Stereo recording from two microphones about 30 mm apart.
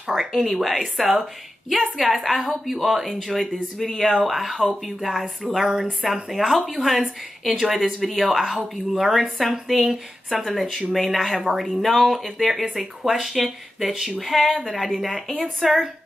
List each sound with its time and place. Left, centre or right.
0.1 s speech: centre
5.6 s speech: centre
6.3 s speech: centre